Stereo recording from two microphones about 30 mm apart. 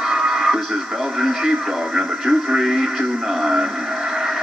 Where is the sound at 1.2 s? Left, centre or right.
Centre.